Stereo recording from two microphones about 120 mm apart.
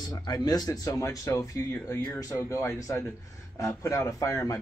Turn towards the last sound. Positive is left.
turn(degrees=25)  # may be behind; listen again after turning